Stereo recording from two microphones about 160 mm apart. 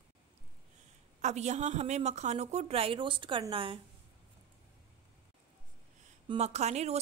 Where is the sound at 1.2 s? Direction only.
45° right (ahead or behind).